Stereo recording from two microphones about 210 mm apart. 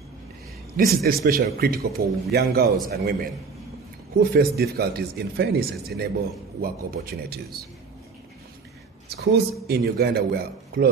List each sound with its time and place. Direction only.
0.7 s speech: 45° right (ahead or behind)
9.1 s speech: 50° right (ahead or behind)